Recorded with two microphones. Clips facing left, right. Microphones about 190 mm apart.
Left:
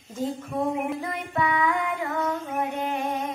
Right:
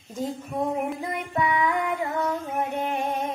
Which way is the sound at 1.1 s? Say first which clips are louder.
Right 3 dB; 20° right (ahead or behind).